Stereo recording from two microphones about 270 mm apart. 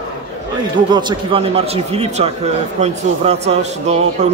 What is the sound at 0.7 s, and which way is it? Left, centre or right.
Speech, centre.